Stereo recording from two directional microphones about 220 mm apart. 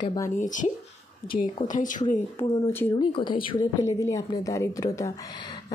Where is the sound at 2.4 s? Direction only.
10° left (ahead or behind).